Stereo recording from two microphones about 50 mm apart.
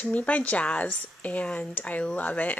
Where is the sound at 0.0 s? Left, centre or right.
Left.